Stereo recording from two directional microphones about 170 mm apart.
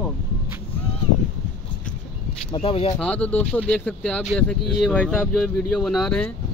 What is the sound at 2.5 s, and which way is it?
Speech, 35° left (ahead or behind).